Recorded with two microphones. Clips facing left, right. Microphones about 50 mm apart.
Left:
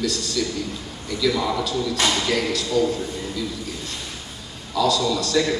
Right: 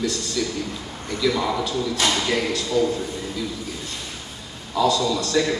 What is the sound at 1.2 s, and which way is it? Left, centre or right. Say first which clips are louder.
A man's voice: even; centre.